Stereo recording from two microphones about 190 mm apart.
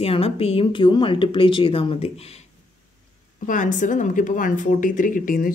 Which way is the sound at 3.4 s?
45° left (ahead or behind).